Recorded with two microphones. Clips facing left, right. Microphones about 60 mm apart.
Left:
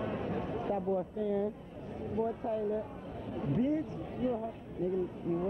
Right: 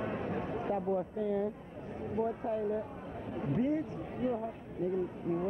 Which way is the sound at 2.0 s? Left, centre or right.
Right.